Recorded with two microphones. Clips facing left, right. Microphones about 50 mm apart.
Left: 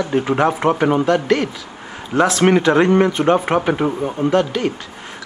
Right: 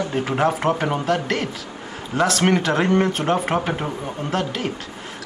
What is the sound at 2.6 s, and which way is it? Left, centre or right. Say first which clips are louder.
Speech: left 5 dB; centre.